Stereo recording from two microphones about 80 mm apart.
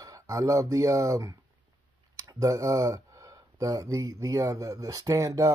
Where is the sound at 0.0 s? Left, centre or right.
Right.